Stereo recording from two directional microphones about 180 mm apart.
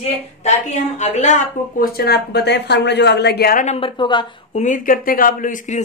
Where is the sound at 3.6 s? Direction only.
30° left (ahead or behind).